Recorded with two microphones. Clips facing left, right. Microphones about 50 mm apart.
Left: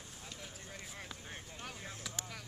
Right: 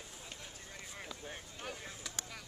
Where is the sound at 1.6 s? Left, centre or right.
Centre.